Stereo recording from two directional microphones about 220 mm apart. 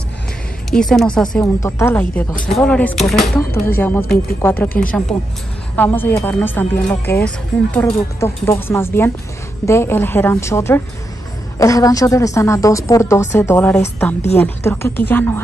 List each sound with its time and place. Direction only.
0.7 s a woman's voice: centre (ahead or behind)